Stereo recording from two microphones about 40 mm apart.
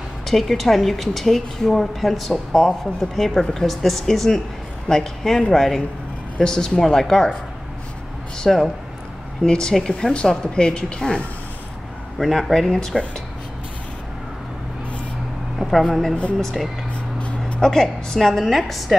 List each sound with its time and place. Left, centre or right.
0.3 s a woman's voice: centre
8.5 s a woman's voice: centre
9.4 s a woman's voice: centre
10.2 s a woman's voice: centre
10.5 s speech: left
12.2 s a woman's voice: centre
15.6 s speech: centre
17.6 s a woman's voice: centre
18.4 s a woman's voice: centre